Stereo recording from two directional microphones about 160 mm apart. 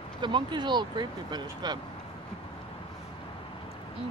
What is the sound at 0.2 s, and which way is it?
Speech, 30° right (ahead or behind).